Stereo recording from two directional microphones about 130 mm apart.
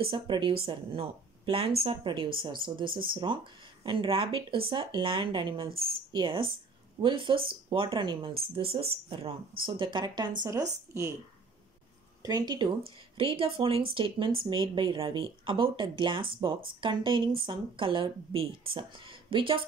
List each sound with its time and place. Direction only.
0.0 s speech: 40° right (ahead or behind); by 11.1 s 20° right (ahead or behind)
12.2 s speech: 30° right (ahead or behind)